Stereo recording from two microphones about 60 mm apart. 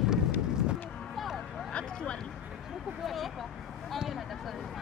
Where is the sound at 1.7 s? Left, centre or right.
Centre.